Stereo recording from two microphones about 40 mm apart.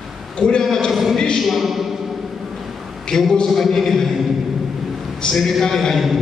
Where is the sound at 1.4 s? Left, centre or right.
Centre.